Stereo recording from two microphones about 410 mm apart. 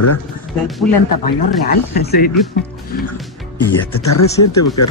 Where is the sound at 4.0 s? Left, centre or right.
Left.